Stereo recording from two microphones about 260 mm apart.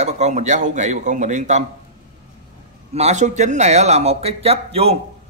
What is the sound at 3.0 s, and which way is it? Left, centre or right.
Speech, right.